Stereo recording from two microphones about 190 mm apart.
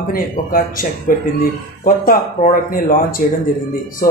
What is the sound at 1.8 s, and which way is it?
Speech, 50° left (ahead or behind).